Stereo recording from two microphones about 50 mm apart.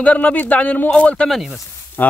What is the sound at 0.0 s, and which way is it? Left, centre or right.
Speech, left.